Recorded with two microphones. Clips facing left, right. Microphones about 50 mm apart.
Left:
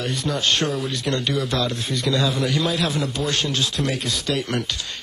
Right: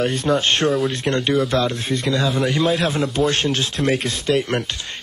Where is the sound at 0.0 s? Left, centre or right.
Right.